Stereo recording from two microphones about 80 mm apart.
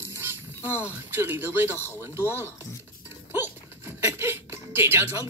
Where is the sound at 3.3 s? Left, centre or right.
Right.